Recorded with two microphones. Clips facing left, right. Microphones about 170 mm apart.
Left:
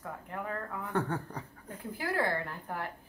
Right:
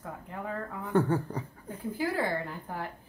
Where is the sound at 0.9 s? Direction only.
5° right (ahead or behind).